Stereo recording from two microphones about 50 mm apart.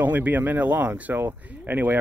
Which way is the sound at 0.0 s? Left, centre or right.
Right.